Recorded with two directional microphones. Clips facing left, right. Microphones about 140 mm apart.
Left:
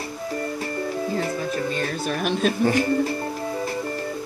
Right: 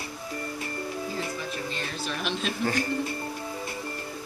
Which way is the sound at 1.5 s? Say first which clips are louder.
Left 8 dB; 50° left (ahead or behind).